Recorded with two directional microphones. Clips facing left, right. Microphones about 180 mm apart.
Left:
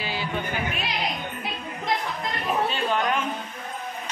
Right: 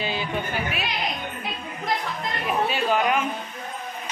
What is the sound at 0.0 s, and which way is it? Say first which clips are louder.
Music: right 2 dB; 20° right (ahead or behind).